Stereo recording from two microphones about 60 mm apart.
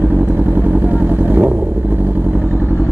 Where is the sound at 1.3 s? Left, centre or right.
Right.